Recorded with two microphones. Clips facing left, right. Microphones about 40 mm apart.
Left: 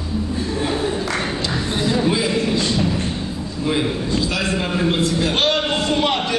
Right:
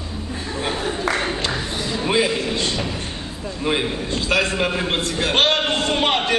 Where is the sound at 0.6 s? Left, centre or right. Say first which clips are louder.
Left 1 dB; centre.